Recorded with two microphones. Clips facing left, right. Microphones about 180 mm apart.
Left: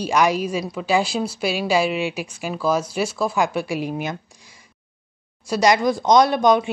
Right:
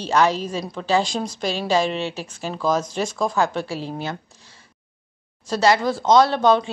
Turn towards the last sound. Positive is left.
turn(degrees=15)  # may be behind; listen again after turning